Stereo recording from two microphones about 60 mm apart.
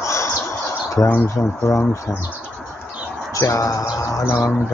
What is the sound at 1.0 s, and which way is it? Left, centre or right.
Speech, left.